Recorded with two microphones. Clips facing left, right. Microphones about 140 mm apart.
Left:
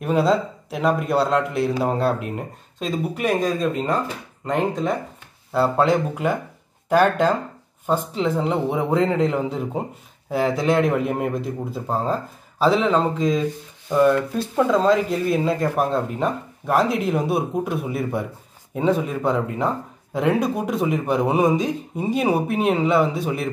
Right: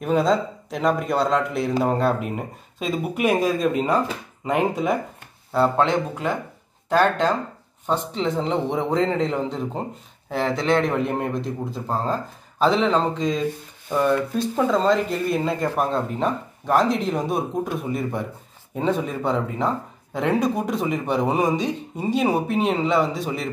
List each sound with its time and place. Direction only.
0.0 s speech: 5° left (ahead or behind)
5.5 s speech: 5° left (ahead or behind)